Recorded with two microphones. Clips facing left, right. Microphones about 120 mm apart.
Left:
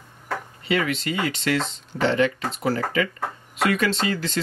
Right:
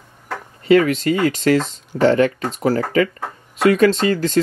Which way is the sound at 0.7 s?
40° right (ahead or behind).